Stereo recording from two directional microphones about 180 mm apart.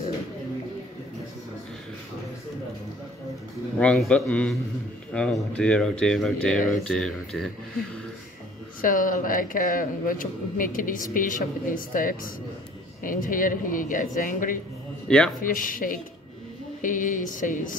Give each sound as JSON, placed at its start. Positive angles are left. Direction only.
{"t": 3.8, "sound": "a man's voice", "side_deg": 5}
{"t": 8.8, "sound": "speech", "side_deg": 50}
{"t": 15.0, "sound": "speech", "side_deg": 5}
{"t": 15.4, "sound": "speech", "side_deg": 50}